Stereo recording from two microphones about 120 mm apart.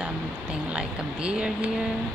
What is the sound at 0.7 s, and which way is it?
Speech, 10° right (ahead or behind).